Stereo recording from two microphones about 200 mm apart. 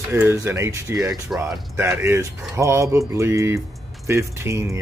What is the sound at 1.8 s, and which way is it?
Speech, 10° right (ahead or behind).